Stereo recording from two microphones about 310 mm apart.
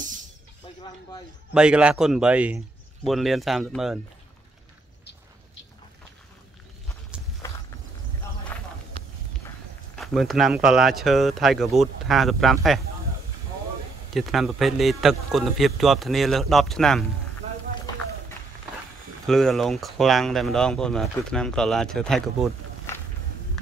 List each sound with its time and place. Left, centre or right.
1.5 s speech: centre
7.4 s walk: centre
8.5 s a sound: centre
9.0 s a sound: centre
9.9 s speech: centre
14.1 s speech: centre
19.2 s speech: centre